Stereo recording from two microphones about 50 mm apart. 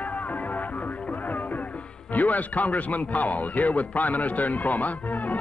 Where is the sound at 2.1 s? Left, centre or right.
Left.